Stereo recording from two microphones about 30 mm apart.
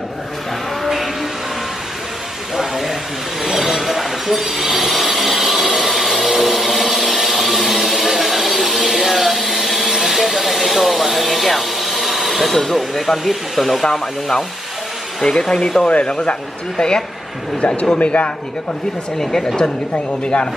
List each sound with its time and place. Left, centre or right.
2.5 s a sound: centre
12.9 s speech: centre
15.2 s speech: centre
15.9 s speech: left
16.7 s a woman's voice: left
17.6 s speech: left
19.3 s a woman's voice: left